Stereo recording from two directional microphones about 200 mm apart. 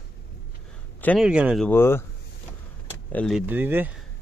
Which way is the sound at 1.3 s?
5° right (ahead or behind).